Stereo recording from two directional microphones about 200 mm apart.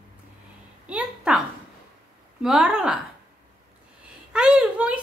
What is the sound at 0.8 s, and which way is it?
Speech, 5° right (ahead or behind).